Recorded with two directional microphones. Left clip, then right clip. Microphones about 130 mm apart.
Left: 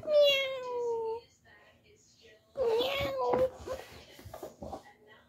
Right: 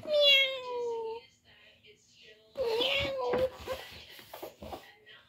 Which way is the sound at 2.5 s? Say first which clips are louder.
Even; 30° left (ahead or behind).